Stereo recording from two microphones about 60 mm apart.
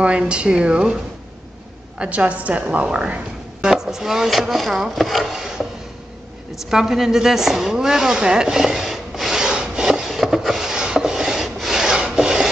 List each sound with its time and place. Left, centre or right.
0.2 s speech: centre
2.0 s a woman's voice: right
3.6 s chopping: centre
6.7 s a sound: centre
11.5 s wood: centre